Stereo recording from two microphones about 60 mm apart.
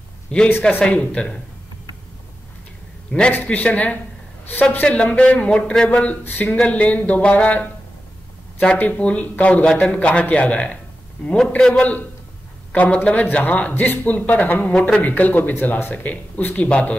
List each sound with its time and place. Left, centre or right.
0.5 s speech: left
0.8 s speech: centre
3.1 s a man's voice: centre
14.7 s a man's voice: centre
15.0 s speech: left